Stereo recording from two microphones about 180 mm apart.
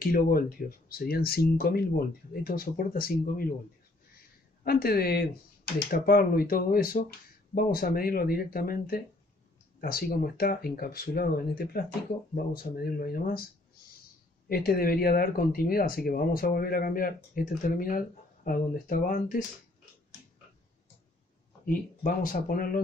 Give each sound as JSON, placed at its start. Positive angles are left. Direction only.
{"t": 0.0, "sound": "speech", "side_deg": 55}
{"t": 4.6, "sound": "speech", "side_deg": 55}
{"t": 14.5, "sound": "speech", "side_deg": 55}
{"t": 21.6, "sound": "speech", "side_deg": 50}